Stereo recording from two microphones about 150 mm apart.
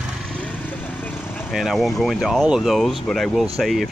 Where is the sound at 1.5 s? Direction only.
Centre (ahead or behind).